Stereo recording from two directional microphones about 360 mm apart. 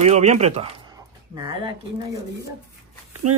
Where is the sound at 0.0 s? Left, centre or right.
Centre.